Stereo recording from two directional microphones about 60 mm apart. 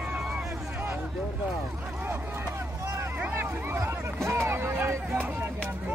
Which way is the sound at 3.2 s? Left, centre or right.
Right.